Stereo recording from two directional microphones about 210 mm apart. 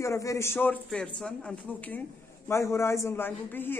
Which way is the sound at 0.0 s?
15° left (ahead or behind).